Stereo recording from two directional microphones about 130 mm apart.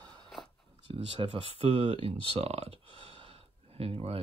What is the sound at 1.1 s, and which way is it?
Speech, 45° right (ahead or behind).